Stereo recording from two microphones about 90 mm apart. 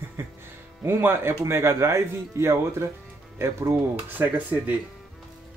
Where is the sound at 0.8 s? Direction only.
25° right (ahead or behind).